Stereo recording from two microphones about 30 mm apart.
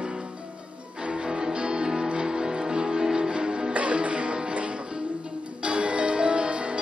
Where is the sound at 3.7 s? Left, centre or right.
Right.